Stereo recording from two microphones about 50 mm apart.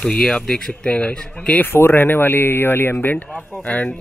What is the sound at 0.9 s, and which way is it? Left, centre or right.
Speech, left.